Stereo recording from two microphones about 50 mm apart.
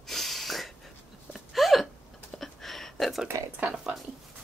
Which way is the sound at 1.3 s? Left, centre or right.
Centre.